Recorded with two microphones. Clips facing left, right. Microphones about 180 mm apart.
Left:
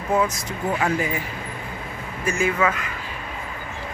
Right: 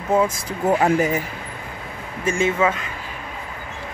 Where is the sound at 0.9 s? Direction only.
40° right (ahead or behind).